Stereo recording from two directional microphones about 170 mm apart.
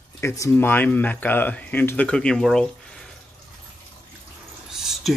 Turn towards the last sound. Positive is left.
turn(degrees=-5)  # may be behind; listen again after turning